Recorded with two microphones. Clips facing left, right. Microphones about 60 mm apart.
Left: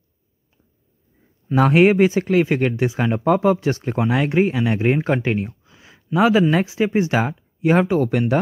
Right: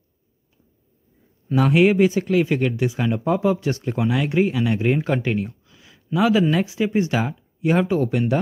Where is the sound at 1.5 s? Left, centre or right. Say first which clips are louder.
Left 2 dB; left.